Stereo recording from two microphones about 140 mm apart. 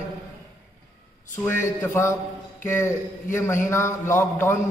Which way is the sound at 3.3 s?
20° left (ahead or behind).